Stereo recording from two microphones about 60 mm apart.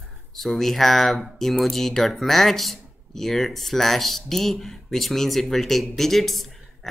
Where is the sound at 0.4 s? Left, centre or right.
Centre.